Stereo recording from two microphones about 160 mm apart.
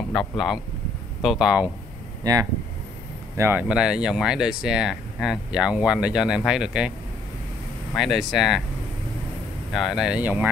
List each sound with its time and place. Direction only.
0.1 s speech: centre (ahead or behind)
2.3 s speech: 20° right (ahead or behind); by 6.9 s 5° right (ahead or behind)
7.9 s speech: centre (ahead or behind)
9.7 s speech: centre (ahead or behind)